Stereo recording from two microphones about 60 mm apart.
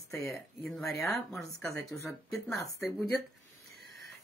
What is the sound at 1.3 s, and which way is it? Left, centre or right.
Speech, centre.